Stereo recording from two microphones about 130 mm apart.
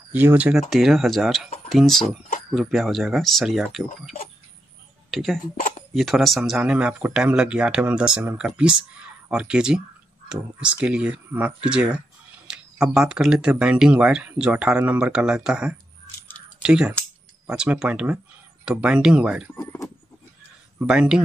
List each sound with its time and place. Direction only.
0.1 s speech: 15° right (ahead or behind)
0.6 s speech: centre (ahead or behind)
5.1 s speech: centre (ahead or behind)
12.5 s a sound: 5° right (ahead or behind)
12.8 s speech: 5° right (ahead or behind)
19.5 s speech: 15° left (ahead or behind)
20.8 s speech: 5° right (ahead or behind)